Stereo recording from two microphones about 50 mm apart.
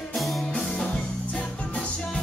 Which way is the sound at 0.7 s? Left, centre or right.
Centre.